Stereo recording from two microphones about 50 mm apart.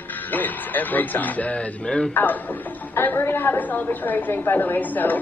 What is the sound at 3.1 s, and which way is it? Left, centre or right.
A woman's voice, left.